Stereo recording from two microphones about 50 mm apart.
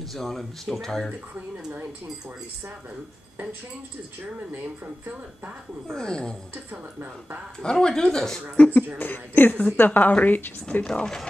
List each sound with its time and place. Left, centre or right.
0.1 s speech: centre
5.0 s speech: right
5.9 s speech: centre
6.7 s speech: right
7.6 s speech: centre
8.5 s speech: left
8.9 s a woman's voice: left
10.9 s speech: centre